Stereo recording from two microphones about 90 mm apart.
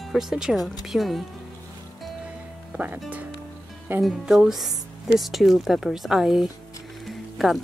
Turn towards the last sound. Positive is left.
turn(degrees=0)  # may be behind; listen again after turning